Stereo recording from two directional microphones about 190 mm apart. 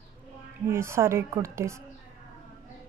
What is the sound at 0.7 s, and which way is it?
A woman's voice, 15° right (ahead or behind).